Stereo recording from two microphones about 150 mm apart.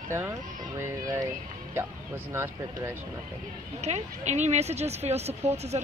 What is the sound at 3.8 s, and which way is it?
Speech, 50° right (ahead or behind).